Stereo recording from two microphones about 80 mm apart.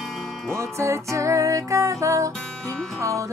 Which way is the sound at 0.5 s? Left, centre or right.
Right.